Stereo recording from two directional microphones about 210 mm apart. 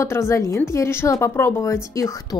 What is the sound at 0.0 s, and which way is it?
A woman's voice, 15° left (ahead or behind).